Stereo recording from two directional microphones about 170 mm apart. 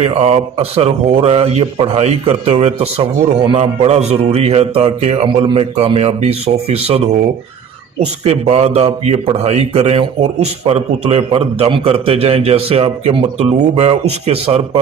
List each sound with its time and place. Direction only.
0.0 s speech: 40° right (ahead or behind)